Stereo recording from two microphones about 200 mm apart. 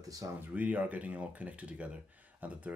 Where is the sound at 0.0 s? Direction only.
15° right (ahead or behind).